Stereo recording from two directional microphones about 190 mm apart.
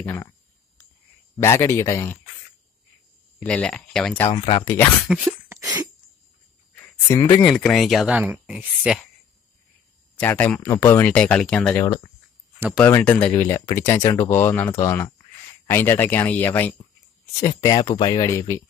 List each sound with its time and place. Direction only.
0.0 s speech: 10° left (ahead or behind)
1.4 s speech: 15° left (ahead or behind)
3.3 s speech: 5° left (ahead or behind)
4.3 s speech: 25° left (ahead or behind)
5.0 s a sound: 10° right (ahead or behind)
6.7 s a sound: 10° left (ahead or behind)
7.4 s speech: 5° left (ahead or behind)
10.1 s speech: 10° left (ahead or behind)
12.9 s speech: 5° left (ahead or behind)